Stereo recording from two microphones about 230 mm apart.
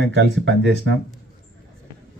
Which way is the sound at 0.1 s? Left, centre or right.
Right.